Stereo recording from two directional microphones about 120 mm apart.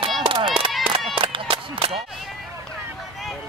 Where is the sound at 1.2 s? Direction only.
45° right (ahead or behind).